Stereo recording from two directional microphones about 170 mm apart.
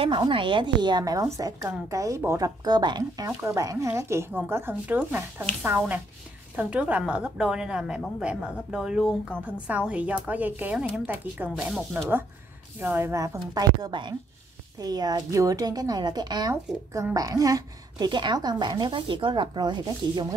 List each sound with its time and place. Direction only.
0.0 s a woman's voice: 30° right (ahead or behind)